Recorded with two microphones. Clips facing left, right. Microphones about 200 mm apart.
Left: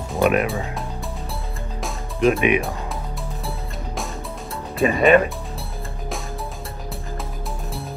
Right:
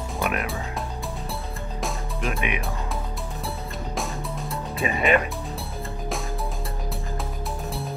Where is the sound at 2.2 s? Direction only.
15° left (ahead or behind).